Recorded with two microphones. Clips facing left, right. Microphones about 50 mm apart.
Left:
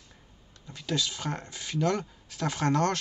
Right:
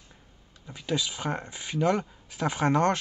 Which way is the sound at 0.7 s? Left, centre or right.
Centre.